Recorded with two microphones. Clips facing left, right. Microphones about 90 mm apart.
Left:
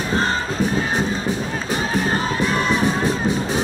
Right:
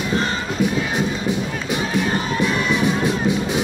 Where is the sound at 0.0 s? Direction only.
35° left (ahead or behind).